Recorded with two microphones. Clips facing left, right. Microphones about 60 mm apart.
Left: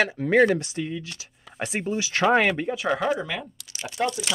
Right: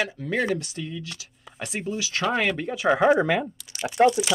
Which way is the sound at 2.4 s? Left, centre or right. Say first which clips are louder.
Left 2 dB; centre.